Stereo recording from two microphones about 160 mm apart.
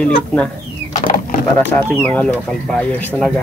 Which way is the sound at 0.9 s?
50° left (ahead or behind).